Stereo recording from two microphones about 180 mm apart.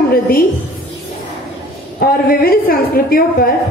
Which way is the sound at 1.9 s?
55° left (ahead or behind).